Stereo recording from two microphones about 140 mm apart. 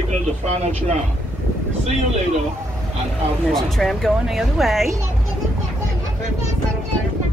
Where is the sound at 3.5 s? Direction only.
Centre (ahead or behind).